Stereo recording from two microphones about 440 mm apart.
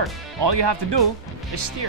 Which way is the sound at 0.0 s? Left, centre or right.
Right.